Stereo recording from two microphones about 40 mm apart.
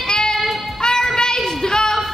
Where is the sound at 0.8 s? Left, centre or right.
Centre.